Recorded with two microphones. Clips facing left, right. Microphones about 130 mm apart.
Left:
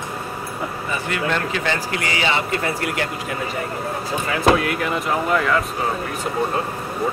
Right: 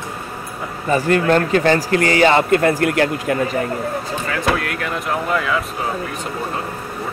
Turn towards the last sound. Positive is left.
turn(degrees=0)  # may be behind; listen again after turning